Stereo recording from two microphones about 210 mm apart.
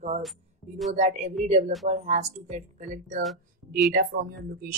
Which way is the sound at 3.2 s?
Centre (ahead or behind).